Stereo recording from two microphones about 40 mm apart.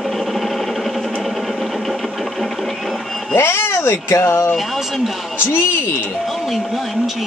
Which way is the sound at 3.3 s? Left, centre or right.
Left.